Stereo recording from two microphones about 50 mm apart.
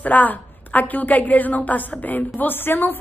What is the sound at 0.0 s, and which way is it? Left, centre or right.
A woman's voice, left.